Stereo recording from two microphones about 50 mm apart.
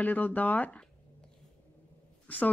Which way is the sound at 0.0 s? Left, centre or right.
Left.